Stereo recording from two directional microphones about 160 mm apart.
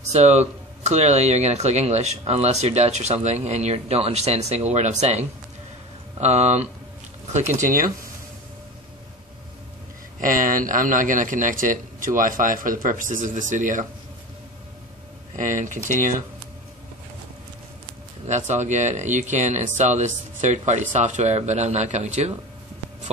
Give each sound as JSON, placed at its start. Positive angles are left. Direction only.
{"t": 0.0, "sound": "speech", "side_deg": -45}
{"t": 7.6, "sound": "speech", "side_deg": -60}
{"t": 10.2, "sound": "speech", "side_deg": -55}
{"t": 15.3, "sound": "speech", "side_deg": -50}
{"t": 18.2, "sound": "speech", "side_deg": -45}